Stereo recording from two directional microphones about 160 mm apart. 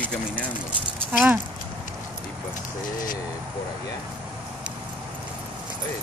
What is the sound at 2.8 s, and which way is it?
Speech, 55° left (ahead or behind).